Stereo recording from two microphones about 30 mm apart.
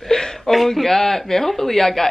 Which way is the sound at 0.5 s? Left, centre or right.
Centre.